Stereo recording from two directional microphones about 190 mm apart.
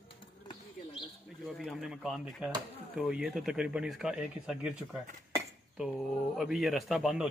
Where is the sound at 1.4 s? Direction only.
Centre (ahead or behind).